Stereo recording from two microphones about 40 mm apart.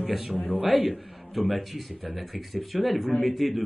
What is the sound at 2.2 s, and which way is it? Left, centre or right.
Speech, centre.